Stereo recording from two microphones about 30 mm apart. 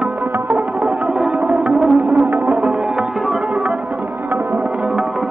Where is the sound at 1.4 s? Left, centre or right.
Right.